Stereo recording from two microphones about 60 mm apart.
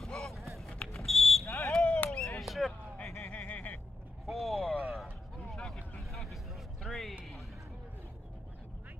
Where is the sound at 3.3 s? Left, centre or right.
Left.